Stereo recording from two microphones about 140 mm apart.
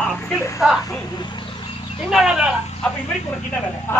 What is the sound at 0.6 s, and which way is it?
Speech, 5° right (ahead or behind).